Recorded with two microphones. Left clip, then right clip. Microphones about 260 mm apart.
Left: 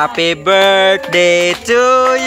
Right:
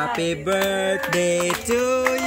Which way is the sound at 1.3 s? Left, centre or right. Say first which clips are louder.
Left 10 dB; left.